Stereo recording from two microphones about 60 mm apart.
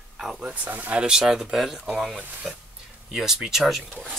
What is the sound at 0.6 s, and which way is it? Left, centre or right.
Speech, right.